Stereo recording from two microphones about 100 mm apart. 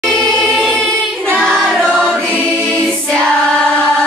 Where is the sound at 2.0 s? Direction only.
5° left (ahead or behind).